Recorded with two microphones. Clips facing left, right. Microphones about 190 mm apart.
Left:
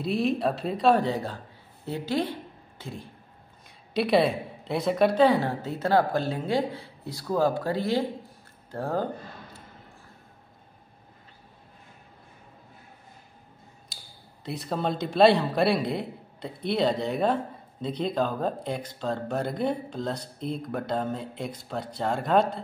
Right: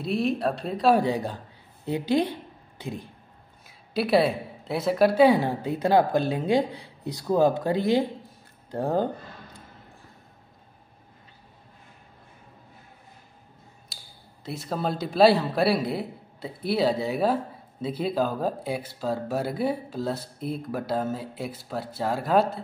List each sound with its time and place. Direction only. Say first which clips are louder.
0.0 s speech: even; centre (ahead or behind)
1.0 s speech: right 2 dB; 15° right (ahead or behind)
3.6 s speech: even; centre (ahead or behind); by 9.0 s 20° right (ahead or behind)
14.4 s speech: even; centre (ahead or behind)